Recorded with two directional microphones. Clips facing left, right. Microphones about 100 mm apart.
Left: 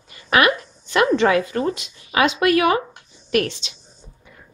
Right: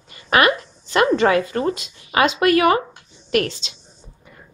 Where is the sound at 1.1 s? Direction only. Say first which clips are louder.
Even; 40° right (ahead or behind).